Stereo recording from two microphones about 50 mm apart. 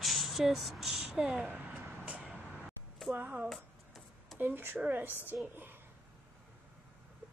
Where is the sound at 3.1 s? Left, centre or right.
Right.